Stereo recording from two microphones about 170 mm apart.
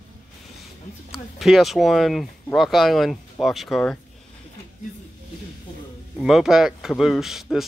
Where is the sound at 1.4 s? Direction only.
Centre (ahead or behind).